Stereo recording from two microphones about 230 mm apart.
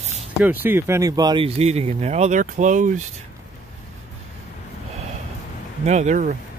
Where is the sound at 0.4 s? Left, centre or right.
Centre; by 2.9 s right.